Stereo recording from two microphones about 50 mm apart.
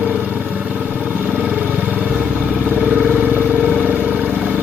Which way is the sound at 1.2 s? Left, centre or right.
Right.